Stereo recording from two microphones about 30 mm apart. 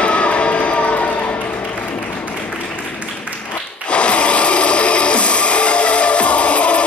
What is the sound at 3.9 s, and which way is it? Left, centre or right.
Music, left.